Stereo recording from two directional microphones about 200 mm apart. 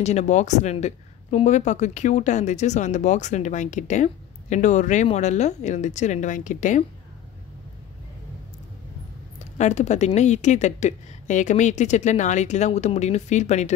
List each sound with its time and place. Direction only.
0.0 s speech: 35° left (ahead or behind)
9.4 s speech: 35° left (ahead or behind)